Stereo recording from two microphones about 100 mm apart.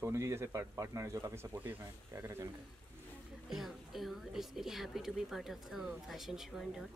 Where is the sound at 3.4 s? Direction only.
Centre (ahead or behind).